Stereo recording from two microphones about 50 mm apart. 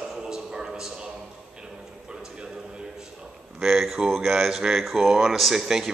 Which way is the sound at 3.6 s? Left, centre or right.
Centre.